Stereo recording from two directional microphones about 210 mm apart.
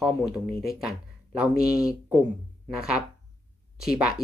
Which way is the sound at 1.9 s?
10° right (ahead or behind).